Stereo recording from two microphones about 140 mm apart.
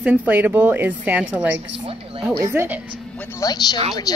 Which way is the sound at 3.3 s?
30° left (ahead or behind).